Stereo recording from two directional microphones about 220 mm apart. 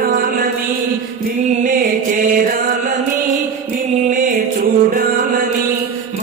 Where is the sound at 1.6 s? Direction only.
35° right (ahead or behind).